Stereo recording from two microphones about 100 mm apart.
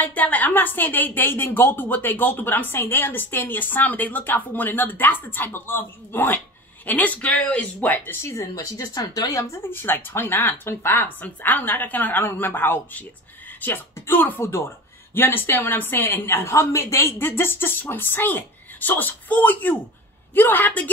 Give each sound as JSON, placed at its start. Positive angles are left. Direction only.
{"t": 0.0, "sound": "speech", "side_deg": 15}